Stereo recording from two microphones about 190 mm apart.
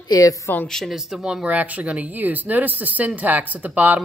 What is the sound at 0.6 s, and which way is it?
Speech, centre (ahead or behind).